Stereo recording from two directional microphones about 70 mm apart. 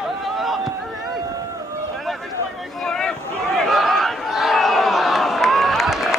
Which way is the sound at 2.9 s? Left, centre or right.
Centre.